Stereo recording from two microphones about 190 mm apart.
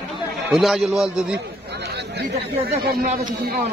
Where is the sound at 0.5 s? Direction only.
Centre (ahead or behind).